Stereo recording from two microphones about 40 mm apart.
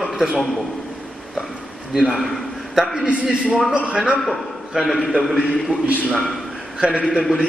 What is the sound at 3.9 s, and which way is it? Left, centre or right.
Speech, right.